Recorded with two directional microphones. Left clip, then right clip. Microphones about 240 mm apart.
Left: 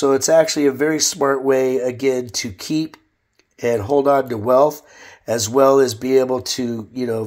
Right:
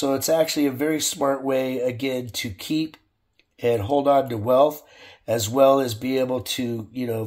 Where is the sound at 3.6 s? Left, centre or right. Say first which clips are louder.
Left 4 dB; left.